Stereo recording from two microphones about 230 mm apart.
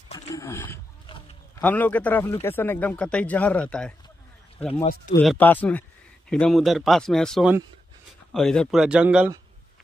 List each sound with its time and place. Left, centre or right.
0.3 s roaring cats: centre
1.0 s a sound: centre
1.6 s speech: centre
4.8 s speech: left
5.2 s speech: centre